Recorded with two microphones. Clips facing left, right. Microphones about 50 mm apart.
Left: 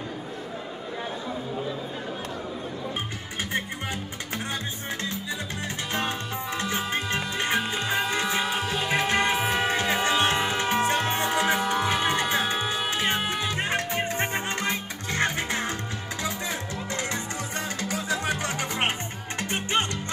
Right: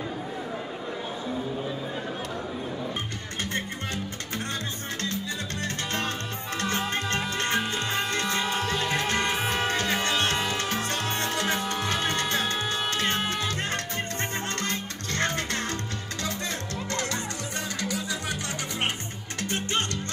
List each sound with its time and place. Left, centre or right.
5.9 s music: centre
17.8 s music: left